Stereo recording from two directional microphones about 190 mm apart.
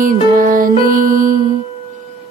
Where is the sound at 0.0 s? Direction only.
45° right (ahead or behind).